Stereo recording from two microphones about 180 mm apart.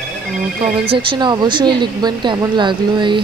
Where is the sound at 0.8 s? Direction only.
30° right (ahead or behind).